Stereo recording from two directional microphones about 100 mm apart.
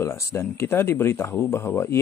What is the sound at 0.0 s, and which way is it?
A man's voice, 30° left (ahead or behind).